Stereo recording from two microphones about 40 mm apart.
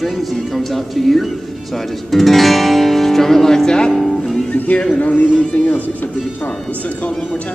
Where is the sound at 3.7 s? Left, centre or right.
Left.